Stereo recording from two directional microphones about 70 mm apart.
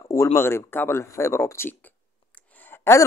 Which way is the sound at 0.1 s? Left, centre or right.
Left.